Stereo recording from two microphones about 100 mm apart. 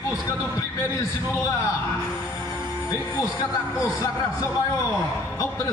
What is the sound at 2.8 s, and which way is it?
A man's voice, 30° left (ahead or behind).